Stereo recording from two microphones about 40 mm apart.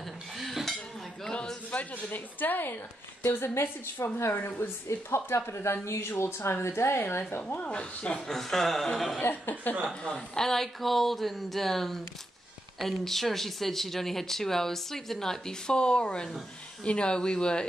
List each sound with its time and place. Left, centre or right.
0.4 s dishes: centre
1.7 s a woman's voice: left
3.3 s a woman's voice: left
5.1 s speech: left
6.5 s a woman's voice: left
7.4 s speech: left
8.3 s speech: centre
9.2 s a woman's voice: left
10.0 s speech: left
10.4 s speech: centre